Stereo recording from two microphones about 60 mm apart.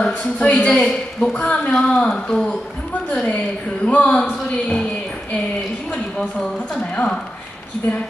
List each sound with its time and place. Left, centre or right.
0.0 s speech: centre
6.8 s speech: centre